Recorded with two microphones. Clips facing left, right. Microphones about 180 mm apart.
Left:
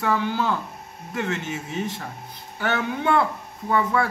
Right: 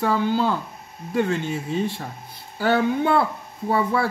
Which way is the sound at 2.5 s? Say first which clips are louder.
Right 6 dB; 30° right (ahead or behind).